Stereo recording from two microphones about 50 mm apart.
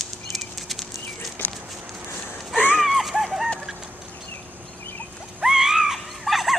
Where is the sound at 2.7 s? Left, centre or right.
Centre.